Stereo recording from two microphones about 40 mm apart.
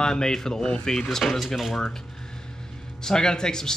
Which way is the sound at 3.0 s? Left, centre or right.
Centre.